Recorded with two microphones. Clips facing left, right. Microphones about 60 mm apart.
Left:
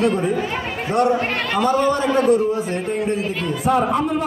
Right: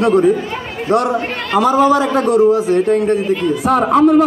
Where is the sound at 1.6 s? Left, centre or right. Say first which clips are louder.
Right 7 dB; right.